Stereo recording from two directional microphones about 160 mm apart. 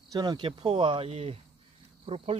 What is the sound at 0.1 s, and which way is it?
Speech, 25° right (ahead or behind).